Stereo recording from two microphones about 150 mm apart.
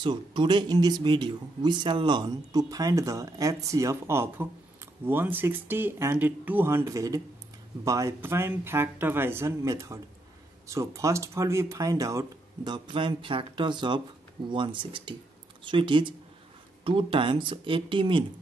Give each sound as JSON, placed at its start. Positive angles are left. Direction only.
{"t": 0.0, "sound": "speech", "side_deg": -30}